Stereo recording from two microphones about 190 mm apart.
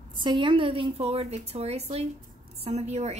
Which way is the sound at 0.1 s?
25° right (ahead or behind).